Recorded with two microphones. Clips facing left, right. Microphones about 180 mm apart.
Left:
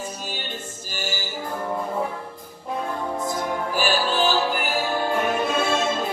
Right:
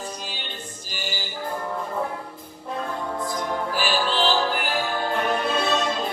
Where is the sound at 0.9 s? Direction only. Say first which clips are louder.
Left 3 dB; 45° left (ahead or behind).